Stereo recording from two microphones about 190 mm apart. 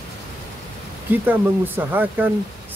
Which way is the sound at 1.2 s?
10° right (ahead or behind).